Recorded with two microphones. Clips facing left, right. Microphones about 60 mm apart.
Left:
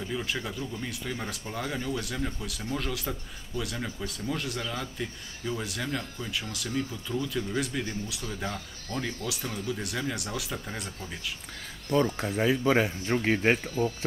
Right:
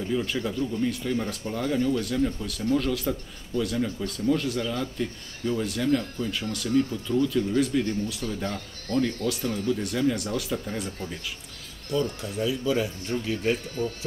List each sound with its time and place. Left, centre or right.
0.1 s speech: centre
11.9 s speech: left